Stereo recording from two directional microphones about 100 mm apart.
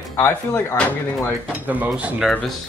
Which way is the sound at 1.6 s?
15° right (ahead or behind).